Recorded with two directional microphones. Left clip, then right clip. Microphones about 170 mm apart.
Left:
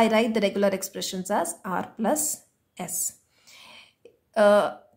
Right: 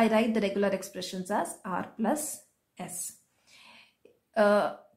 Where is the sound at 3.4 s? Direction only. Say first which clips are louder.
Left 6 dB; 25° left (ahead or behind).